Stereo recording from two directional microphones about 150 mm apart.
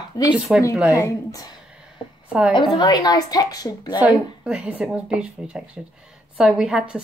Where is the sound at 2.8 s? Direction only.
25° left (ahead or behind).